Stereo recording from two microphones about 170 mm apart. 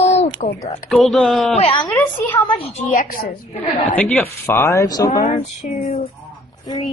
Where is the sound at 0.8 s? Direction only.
Centre (ahead or behind).